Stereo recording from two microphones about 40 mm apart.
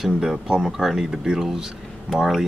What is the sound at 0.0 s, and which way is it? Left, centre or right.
Speech, centre.